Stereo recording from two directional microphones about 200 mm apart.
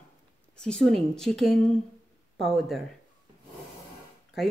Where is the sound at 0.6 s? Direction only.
5° left (ahead or behind).